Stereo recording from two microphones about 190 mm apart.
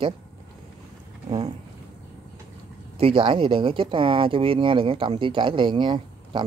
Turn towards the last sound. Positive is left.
turn(degrees=-25)  # may be behind; listen again after turning